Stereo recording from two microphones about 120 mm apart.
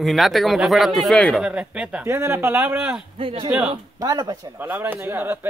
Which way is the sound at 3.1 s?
45° right (ahead or behind).